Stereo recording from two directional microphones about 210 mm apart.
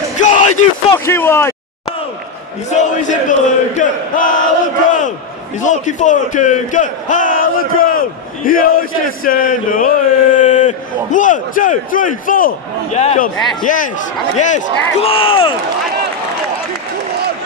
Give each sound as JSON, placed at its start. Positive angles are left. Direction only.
{"t": 0.2, "sound": "a sound", "side_deg": 35}
{"t": 0.9, "sound": "speech", "side_deg": 10}
{"t": 2.7, "sound": "a sound", "side_deg": 35}
{"t": 5.6, "sound": "speech", "side_deg": 35}
{"t": 13.4, "sound": "a man's voice", "side_deg": 0}
{"t": 13.7, "sound": "speech", "side_deg": 40}